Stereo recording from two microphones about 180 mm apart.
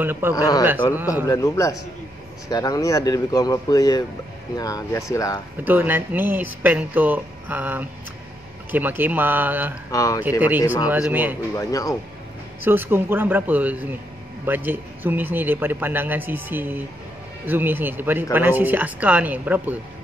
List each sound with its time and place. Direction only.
0.0 s speech: 10° right (ahead or behind)
0.3 s speech: 20° left (ahead or behind)
5.6 s speech: 10° right (ahead or behind)
9.8 s speech: 15° left (ahead or behind)
10.9 s speech: 10° right (ahead or behind)
11.5 s speech: 15° left (ahead or behind)
12.6 s speech: 10° right (ahead or behind)